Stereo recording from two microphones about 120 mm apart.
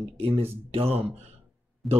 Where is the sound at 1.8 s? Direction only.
Centre (ahead or behind).